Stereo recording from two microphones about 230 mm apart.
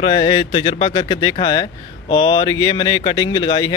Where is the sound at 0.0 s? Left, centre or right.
Left.